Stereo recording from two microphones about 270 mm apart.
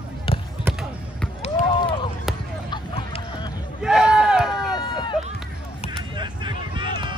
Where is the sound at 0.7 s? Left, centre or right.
Centre.